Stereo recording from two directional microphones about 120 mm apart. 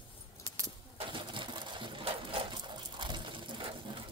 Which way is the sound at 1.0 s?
40° right (ahead or behind).